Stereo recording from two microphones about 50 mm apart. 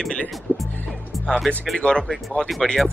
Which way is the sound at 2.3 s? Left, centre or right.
Left.